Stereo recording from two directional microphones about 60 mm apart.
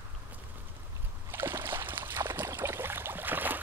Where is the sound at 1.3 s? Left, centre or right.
Right.